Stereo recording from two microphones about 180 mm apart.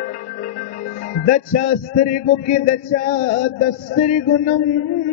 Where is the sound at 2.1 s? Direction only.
45° left (ahead or behind).